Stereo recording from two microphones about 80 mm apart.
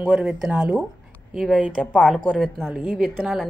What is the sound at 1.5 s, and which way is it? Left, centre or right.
A woman's voice, centre.